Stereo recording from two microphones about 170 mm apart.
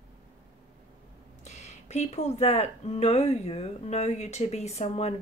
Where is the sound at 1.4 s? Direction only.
40° left (ahead or behind).